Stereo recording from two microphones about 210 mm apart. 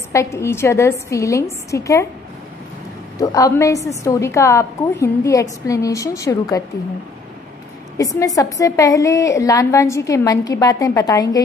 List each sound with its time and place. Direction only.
0.1 s a woman's voice: 15° left (ahead or behind)
3.2 s a woman's voice: 15° left (ahead or behind)
8.0 s a woman's voice: 15° left (ahead or behind)